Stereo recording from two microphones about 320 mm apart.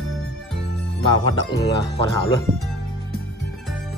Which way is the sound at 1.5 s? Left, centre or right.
Centre.